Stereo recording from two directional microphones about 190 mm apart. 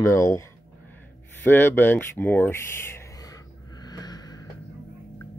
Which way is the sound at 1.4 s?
10° left (ahead or behind).